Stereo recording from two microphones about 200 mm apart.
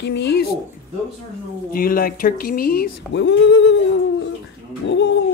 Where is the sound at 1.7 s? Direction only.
45° left (ahead or behind); by 5.1 s 60° left (ahead or behind).